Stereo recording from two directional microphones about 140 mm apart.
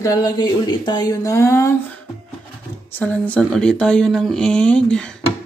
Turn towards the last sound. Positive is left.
turn(degrees=5)  # may be behind; listen again after turning